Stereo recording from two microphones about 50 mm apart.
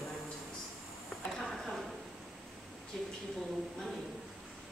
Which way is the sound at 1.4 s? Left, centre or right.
Centre.